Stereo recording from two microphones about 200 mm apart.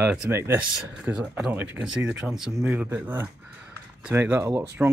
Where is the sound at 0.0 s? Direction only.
10° right (ahead or behind).